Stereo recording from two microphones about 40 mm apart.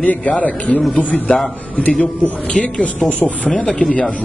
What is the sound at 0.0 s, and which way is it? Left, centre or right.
A man's voice, left.